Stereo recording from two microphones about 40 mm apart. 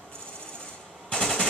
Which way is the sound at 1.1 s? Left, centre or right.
Centre.